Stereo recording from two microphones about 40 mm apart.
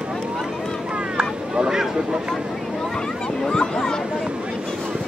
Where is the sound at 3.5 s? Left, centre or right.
Centre.